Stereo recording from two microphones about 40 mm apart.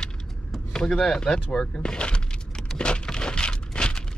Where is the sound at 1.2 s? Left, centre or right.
Centre.